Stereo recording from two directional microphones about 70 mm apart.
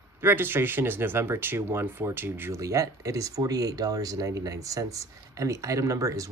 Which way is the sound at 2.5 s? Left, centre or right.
Right.